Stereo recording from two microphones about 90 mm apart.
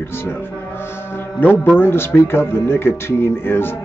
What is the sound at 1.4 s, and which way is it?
Speech, 20° left (ahead or behind).